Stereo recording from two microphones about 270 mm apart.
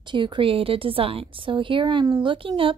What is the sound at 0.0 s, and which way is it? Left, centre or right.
A woman's voice, centre.